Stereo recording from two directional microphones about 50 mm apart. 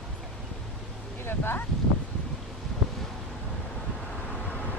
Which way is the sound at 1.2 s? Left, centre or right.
Left.